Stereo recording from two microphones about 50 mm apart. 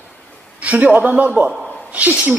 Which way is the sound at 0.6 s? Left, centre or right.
Right.